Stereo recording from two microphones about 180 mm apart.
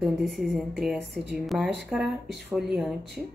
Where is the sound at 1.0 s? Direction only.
70° right (ahead or behind).